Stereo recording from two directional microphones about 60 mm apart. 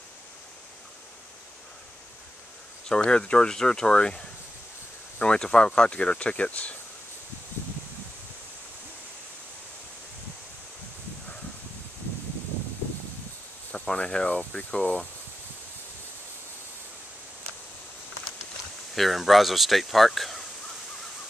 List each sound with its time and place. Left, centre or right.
2.9 s speech: centre
13.7 s speech: centre
18.9 s speech: centre